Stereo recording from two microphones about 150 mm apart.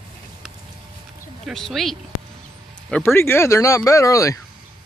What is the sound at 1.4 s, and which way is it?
Speech, centre (ahead or behind).